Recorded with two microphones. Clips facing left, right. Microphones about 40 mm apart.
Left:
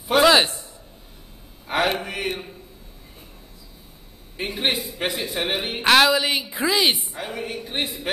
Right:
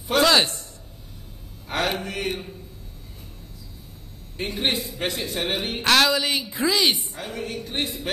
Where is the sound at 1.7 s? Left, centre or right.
Centre.